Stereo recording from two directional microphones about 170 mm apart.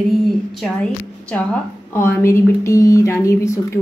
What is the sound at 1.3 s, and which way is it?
Speech, 10° left (ahead or behind).